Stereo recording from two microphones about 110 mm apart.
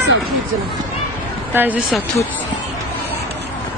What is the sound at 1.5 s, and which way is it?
Speech, 15° right (ahead or behind).